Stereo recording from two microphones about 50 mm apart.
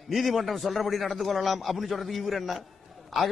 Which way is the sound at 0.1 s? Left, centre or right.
Centre.